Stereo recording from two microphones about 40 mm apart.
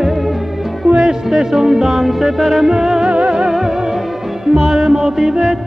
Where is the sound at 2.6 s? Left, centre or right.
Centre.